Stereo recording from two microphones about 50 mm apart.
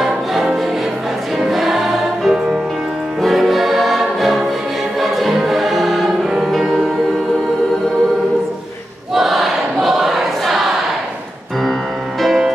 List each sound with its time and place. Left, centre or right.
0.0 s music: centre
9.1 s choir: centre
12.2 s music: centre